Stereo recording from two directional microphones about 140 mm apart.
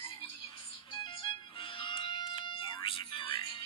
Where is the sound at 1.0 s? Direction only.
40° left (ahead or behind).